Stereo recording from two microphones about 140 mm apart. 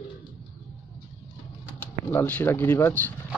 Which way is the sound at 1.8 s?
15° left (ahead or behind).